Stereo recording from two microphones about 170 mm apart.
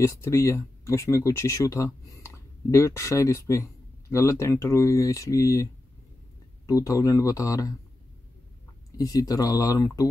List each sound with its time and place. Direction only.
0.0 s speech: 15° left (ahead or behind)
8.9 s speech: 20° left (ahead or behind)